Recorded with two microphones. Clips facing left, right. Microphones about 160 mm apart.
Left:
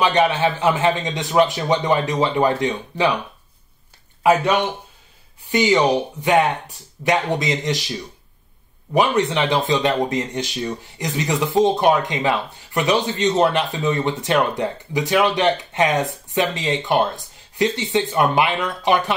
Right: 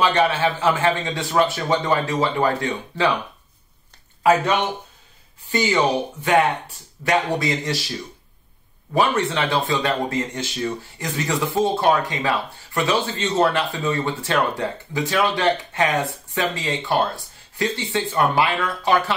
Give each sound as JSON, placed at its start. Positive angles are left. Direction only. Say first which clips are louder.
{"t": 0.0, "sound": "speech", "louder": "left 1 dB", "side_deg": 15}
{"t": 5.5, "sound": "speech", "louder": "left 3 dB", "side_deg": 15}
{"t": 8.9, "sound": "speech", "louder": "left 2 dB", "side_deg": 15}